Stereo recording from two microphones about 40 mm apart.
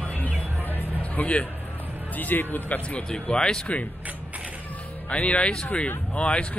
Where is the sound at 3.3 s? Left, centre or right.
Left.